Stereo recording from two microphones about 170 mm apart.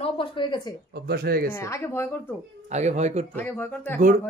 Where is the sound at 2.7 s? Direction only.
40° right (ahead or behind).